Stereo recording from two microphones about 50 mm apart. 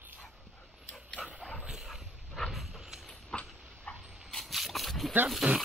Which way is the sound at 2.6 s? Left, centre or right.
Centre.